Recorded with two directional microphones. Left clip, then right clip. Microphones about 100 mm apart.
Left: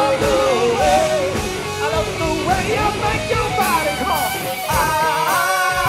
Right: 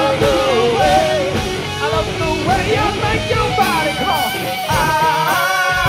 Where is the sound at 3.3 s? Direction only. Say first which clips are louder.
Right 3 dB; 40° left (ahead or behind).